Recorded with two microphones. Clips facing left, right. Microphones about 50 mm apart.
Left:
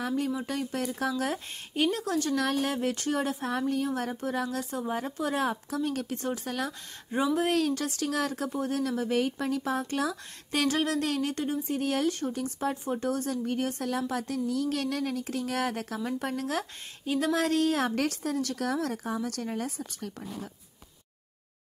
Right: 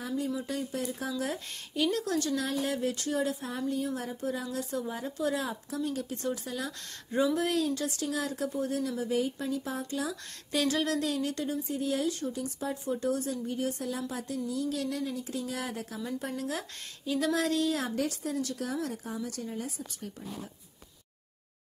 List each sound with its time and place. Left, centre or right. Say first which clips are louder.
0.0 s a woman's voice: left 3 dB; left
1.2 s speech: left 3 dB; left
2.3 s a woman's voice: left 3 dB; left
2.7 s speech: left 2 dB; left
3.5 s a woman's voice: left 6 dB; left
4.6 s speech: left 2 dB; left
6.2 s speech: right 1 dB; left
7.1 s speech: right 1 dB; left
7.5 s speech: left 2 dB; left
11.7 s a woman's voice: left 3 dB; left
12.8 s a woman's voice: left 1 dB; left
17.9 s a woman's voice: left 2 dB; left
18.6 s speech: left 4 dB; left